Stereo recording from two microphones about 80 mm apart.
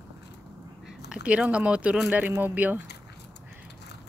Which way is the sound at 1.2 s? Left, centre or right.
Centre.